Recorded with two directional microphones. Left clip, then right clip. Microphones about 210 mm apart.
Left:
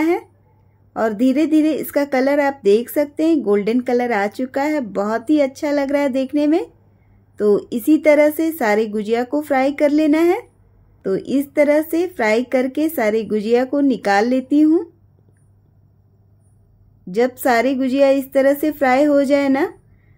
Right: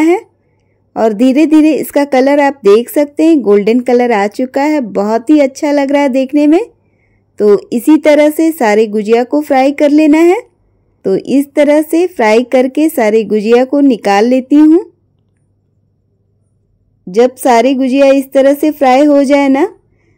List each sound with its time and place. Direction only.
0.0 s speech: 35° right (ahead or behind)
17.1 s speech: 35° right (ahead or behind)